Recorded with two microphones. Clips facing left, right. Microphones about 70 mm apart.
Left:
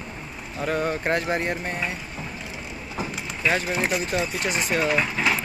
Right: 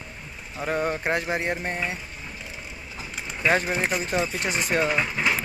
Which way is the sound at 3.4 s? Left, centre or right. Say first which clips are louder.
Right 1 dB; right.